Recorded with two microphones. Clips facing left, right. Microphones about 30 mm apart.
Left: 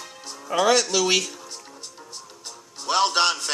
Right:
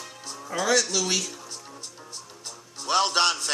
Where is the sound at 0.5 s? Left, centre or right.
Left.